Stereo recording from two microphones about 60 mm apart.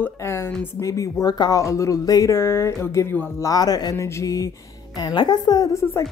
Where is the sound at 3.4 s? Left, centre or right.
Left.